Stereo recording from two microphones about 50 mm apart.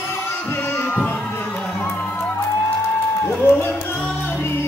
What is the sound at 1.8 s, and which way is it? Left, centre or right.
Music, left.